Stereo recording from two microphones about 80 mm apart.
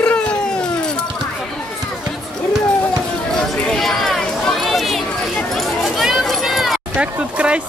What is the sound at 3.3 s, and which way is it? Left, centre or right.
Chatter, centre.